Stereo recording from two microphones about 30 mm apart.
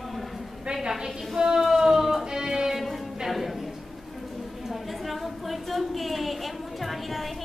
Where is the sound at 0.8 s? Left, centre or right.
Centre.